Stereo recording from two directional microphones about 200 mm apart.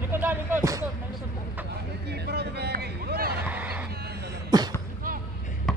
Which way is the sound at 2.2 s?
55° right (ahead or behind).